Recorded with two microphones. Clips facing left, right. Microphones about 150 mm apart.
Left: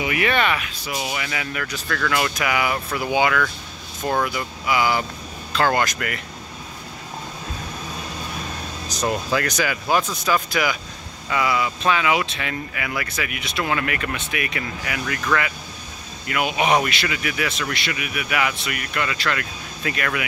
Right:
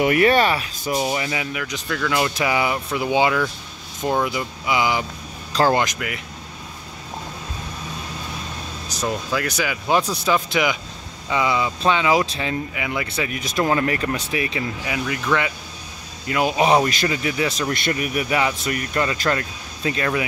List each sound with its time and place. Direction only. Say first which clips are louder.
0.0 s speech: right 5 dB; 40° right (ahead or behind); by 1.5 s 25° right (ahead or behind)
1.5 s speech: right 1 dB; 15° right (ahead or behind)
5.5 s speech: right 2 dB; 35° right (ahead or behind)
5.9 s speech: left 1 dB; 10° right (ahead or behind)
9.0 s speech: left 1 dB; centre (ahead or behind)
10.2 s speech: right 2 dB; 20° right (ahead or behind)
13.4 s speech: right 5 dB; 40° right (ahead or behind); by 15.5 s 20° right (ahead or behind)
16.3 s speech: right 3 dB; 30° right (ahead or behind)
17.7 s speech: right 5 dB; 45° right (ahead or behind); by 20.2 s 25° right (ahead or behind)